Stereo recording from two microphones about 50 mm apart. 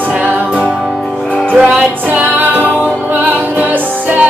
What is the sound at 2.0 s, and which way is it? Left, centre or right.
Music, right.